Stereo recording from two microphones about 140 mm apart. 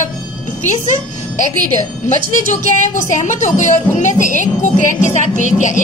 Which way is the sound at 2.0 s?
60° left (ahead or behind).